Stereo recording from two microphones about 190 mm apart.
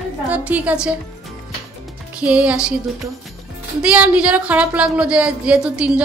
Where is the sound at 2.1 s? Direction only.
5° right (ahead or behind).